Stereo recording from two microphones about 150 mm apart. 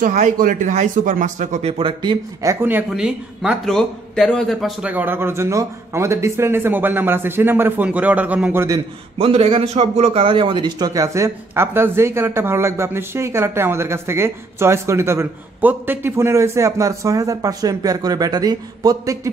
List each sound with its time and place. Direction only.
0.0 s speech: 60° right (ahead or behind); by 2.5 s 30° right (ahead or behind)
2.9 s a man's voice: 5° right (ahead or behind)
4.9 s speech: 15° right (ahead or behind)
9.2 s a man's voice: 40° right (ahead or behind); by 19.3 s 25° right (ahead or behind)